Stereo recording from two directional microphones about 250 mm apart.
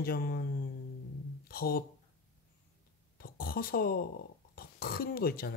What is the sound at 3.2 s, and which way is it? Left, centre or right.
Speech, left.